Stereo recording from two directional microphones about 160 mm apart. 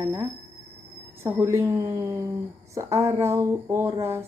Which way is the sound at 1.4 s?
15° right (ahead or behind).